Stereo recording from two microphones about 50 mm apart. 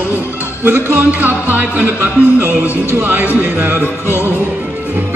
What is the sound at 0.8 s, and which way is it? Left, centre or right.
Music, right.